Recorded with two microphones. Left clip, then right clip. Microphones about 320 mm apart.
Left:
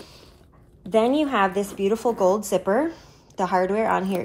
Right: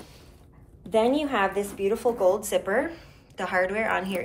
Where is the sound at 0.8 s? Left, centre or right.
Left.